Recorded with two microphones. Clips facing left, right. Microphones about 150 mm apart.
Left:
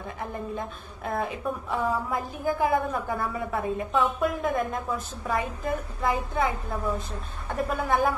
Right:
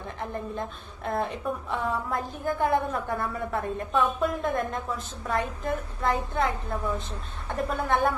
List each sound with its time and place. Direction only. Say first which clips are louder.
0.2 s a woman's voice: even; centre (ahead or behind)